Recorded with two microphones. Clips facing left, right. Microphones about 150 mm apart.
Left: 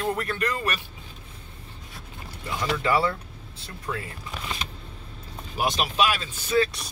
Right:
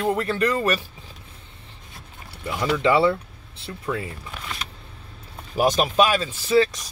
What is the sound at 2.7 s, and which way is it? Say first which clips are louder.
Speech: right 6 dB; 25° right (ahead or behind).